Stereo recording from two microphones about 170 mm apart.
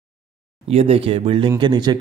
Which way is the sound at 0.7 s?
35° right (ahead or behind).